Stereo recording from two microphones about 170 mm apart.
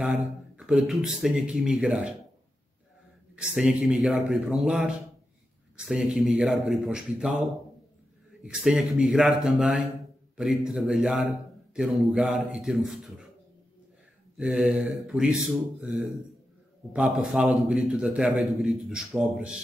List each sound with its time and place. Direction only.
0.0 s a man's voice: 5° right (ahead or behind)
3.3 s a man's voice: 5° right (ahead or behind)
14.3 s a man's voice: 5° right (ahead or behind)